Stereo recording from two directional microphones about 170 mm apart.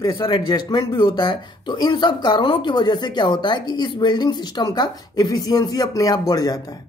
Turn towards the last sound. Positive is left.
turn(degrees=20)  # may be behind; listen again after turning